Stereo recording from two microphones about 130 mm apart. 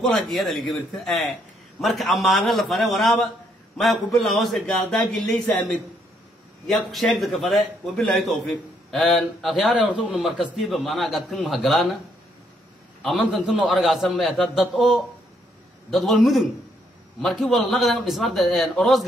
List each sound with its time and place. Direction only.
0.0 s a man's voice: centre (ahead or behind)
6.7 s a man's voice: centre (ahead or behind)
13.0 s a man's voice: centre (ahead or behind)